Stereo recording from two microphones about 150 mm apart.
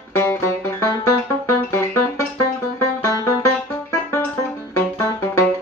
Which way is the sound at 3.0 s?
20° left (ahead or behind).